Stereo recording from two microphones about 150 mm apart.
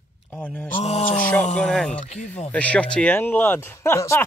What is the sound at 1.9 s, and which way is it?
Speech, 50° left (ahead or behind).